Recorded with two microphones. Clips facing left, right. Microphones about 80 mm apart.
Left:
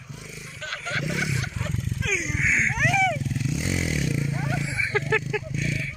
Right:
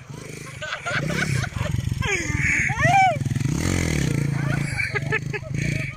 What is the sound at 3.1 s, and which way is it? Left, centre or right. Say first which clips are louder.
Vehicle: right 3 dB; right.